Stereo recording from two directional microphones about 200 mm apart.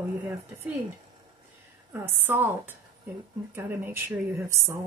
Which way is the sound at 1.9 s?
10° right (ahead or behind).